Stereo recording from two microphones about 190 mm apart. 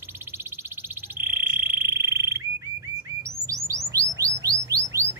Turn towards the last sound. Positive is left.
turn(degrees=-15)  # may be behind; listen again after turning